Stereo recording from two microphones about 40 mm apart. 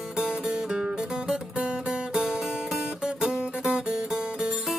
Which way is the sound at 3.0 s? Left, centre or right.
Centre.